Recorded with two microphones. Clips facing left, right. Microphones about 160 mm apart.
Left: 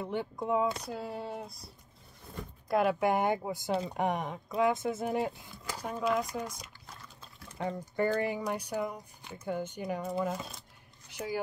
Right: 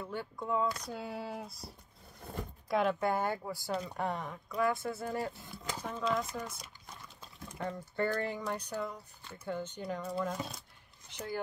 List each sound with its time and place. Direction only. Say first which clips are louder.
0.0 s speech: left 5 dB; 20° left (ahead or behind)
0.8 s speech: left 2 dB; centre (ahead or behind)
2.7 s speech: left 3 dB; 10° left (ahead or behind)
7.5 s speech: left 3 dB; 10° left (ahead or behind)
11.1 s a sound: left 4 dB; 10° left (ahead or behind)